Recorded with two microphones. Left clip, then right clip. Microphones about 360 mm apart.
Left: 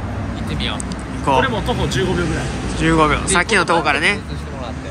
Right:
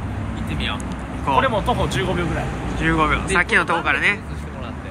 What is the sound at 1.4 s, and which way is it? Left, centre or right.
Speech, centre.